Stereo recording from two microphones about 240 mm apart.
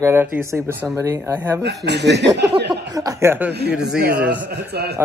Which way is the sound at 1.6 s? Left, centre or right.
Right.